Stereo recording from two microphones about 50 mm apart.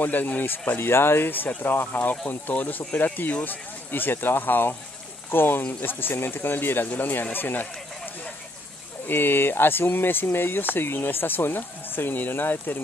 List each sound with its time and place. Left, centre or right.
0.0 s speech: left